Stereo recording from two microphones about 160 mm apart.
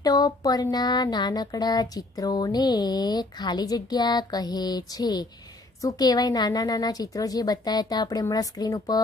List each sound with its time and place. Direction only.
0.0 s speech: 20° left (ahead or behind)